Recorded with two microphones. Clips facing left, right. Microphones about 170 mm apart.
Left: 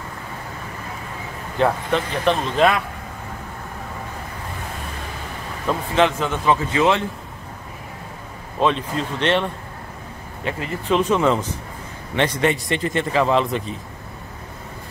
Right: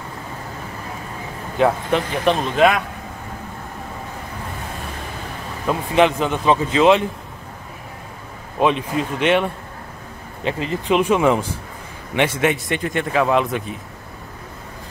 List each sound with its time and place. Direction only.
1.6 s speech: 10° right (ahead or behind)
5.7 s speech: 15° right (ahead or behind)
8.5 s speech: 15° right (ahead or behind)
10.4 s speech: 20° right (ahead or behind); by 13.7 s 5° right (ahead or behind)